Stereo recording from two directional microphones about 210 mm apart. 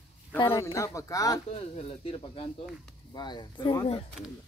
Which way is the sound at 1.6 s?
30° left (ahead or behind).